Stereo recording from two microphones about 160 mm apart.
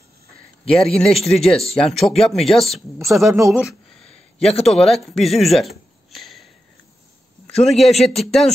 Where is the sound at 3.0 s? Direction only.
20° right (ahead or behind).